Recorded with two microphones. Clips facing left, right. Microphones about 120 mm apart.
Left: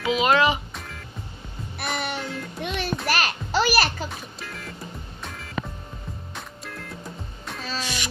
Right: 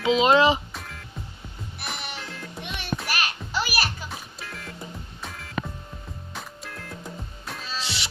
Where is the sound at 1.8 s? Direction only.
55° left (ahead or behind).